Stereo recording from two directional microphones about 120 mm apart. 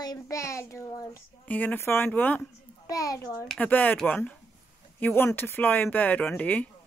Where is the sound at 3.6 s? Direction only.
15° left (ahead or behind).